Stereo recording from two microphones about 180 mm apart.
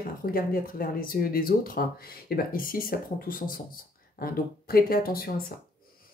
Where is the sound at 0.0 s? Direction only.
55° left (ahead or behind).